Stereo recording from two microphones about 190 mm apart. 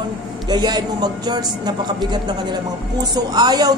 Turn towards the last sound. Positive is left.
turn(degrees=-20)  # may be behind; listen again after turning